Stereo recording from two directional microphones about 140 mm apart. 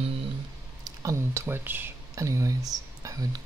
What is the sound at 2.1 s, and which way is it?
Whispering, 25° right (ahead or behind).